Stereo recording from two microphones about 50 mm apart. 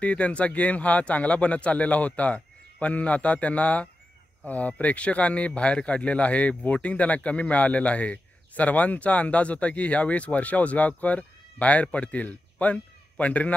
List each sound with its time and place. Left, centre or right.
0.0 s speech: left